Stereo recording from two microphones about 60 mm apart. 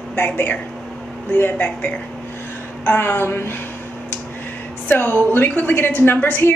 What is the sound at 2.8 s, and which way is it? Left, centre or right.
Speech, left.